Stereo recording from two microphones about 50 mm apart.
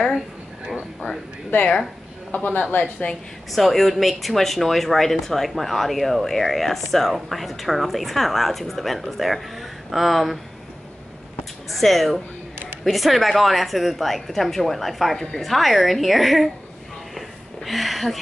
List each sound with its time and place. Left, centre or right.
2.3 s a man's voice: left
3.5 s speech: centre
11.7 s speech: centre
17.6 s speech: centre